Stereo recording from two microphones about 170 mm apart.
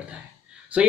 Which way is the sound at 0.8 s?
5° right (ahead or behind).